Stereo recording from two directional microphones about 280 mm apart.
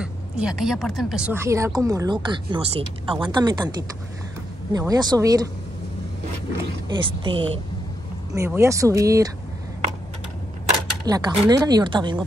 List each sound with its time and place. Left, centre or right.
0.0 s speech: centre
4.7 s speech: centre
6.9 s speech: centre
11.1 s speech: centre